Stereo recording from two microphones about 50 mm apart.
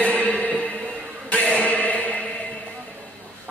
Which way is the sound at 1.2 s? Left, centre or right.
Left.